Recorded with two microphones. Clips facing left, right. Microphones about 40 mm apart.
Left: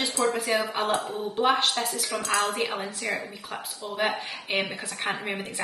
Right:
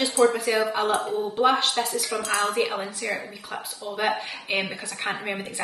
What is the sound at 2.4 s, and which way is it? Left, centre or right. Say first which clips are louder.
Speech: right 3 dB; right.